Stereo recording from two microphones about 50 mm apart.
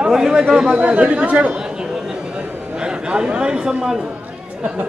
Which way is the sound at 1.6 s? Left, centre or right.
Centre.